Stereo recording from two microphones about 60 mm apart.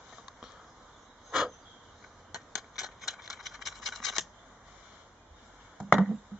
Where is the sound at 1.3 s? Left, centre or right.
Centre.